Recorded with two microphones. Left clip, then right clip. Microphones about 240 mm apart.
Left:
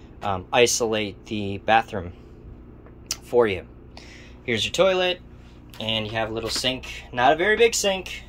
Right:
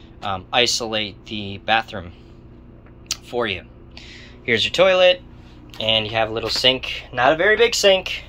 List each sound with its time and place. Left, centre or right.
0.2 s speech: centre
3.1 s a sound: left
4.1 s speech: centre